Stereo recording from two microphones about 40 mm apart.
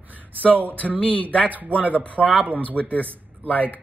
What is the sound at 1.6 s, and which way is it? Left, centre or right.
Speech, right.